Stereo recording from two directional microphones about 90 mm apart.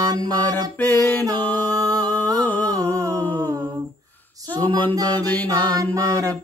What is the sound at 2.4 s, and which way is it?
Humming, 20° left (ahead or behind).